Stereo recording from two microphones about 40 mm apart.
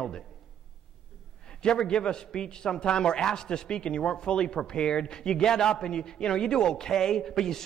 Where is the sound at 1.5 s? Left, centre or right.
Left.